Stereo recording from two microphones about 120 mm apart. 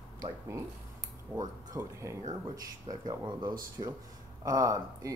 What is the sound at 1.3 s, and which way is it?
Speech, 30° right (ahead or behind).